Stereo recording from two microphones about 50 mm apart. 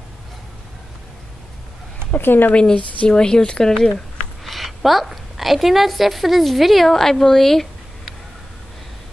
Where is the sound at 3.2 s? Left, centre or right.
Centre.